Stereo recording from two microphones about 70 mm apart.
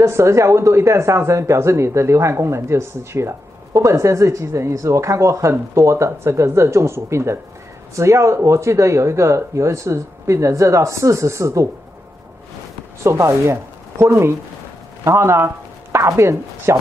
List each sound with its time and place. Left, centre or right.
0.0 s speech: right
13.0 s speech: right